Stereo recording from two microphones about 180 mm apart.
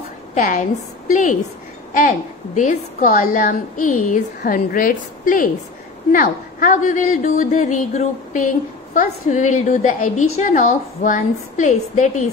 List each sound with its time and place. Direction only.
0.3 s a woman's voice: 45° left (ahead or behind)